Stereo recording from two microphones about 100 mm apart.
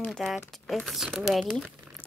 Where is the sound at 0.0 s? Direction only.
10° left (ahead or behind).